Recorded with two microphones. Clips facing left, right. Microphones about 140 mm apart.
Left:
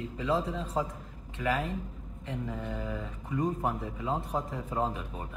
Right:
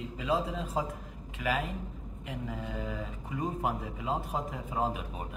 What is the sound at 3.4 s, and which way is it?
A man's voice, 15° right (ahead or behind).